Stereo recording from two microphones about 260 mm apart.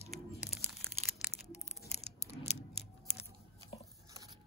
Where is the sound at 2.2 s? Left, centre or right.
Left.